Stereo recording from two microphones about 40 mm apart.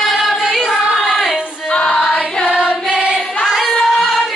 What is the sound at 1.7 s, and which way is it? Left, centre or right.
Choir, left.